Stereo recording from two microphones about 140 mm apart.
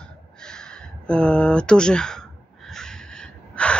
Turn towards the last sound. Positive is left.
turn(degrees=5)  # may be behind; listen again after turning